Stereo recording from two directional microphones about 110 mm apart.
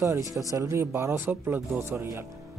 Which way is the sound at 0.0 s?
30° right (ahead or behind).